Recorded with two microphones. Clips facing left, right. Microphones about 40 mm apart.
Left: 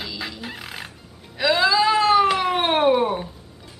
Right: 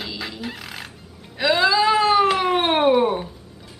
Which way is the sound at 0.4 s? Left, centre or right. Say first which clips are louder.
Right 1 dB; centre.